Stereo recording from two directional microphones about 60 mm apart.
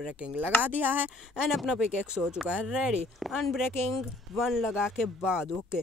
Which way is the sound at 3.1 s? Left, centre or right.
Centre.